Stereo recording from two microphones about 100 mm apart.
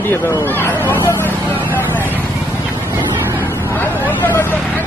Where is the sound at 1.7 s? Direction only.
20° left (ahead or behind).